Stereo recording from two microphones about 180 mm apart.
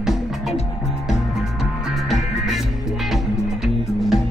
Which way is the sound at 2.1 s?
Centre (ahead or behind).